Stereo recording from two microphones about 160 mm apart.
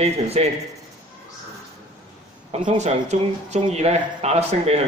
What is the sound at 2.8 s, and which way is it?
Speech, 45° right (ahead or behind).